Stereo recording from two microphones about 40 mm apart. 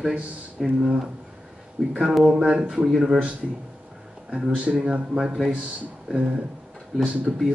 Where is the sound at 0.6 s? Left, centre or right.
Centre.